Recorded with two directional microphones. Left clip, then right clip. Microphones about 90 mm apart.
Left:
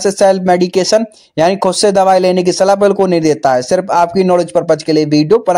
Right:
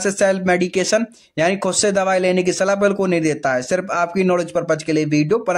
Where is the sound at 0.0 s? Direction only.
35° left (ahead or behind).